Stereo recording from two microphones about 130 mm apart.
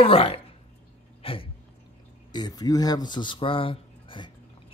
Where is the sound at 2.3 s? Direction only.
30° left (ahead or behind).